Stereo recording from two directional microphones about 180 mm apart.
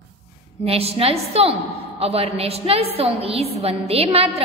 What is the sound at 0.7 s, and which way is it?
A woman's voice, 35° right (ahead or behind).